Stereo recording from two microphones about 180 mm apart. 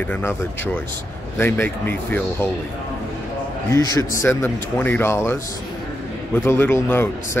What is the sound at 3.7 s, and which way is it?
Speech, 20° left (ahead or behind).